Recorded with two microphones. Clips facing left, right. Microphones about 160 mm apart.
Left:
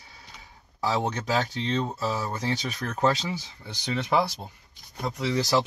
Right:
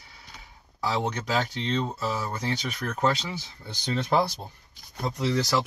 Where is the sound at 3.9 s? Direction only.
10° left (ahead or behind).